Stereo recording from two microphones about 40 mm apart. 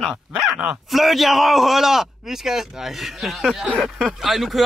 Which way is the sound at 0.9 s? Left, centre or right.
Centre.